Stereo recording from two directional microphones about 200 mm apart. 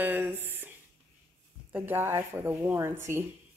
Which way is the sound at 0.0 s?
10° right (ahead or behind).